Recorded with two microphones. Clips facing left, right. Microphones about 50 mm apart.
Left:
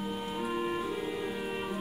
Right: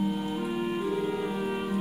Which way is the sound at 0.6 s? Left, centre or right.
Centre.